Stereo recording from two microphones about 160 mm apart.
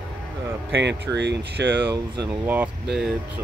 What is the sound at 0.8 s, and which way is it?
Speech, 90° right.